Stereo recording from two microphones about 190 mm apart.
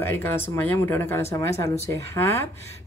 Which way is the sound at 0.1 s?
10° left (ahead or behind).